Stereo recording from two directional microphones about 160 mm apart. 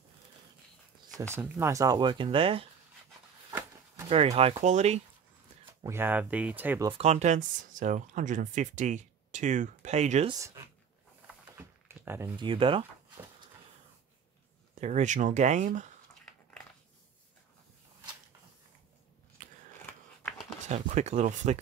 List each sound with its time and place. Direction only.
1.6 s speech: 20° right (ahead or behind)
4.1 s speech: 40° right (ahead or behind)
5.9 s speech: 15° right (ahead or behind)
7.0 s speech: 45° right (ahead or behind)
11.5 s a sound: 15° right (ahead or behind)
12.4 s speech: 30° right (ahead or behind)
14.8 s speech: 45° right (ahead or behind)
19.4 s scissors: 55° right (ahead or behind)
20.6 s speech: 45° right (ahead or behind)